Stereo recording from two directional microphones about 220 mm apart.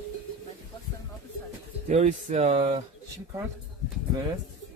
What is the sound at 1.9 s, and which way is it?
Speech, 30° right (ahead or behind).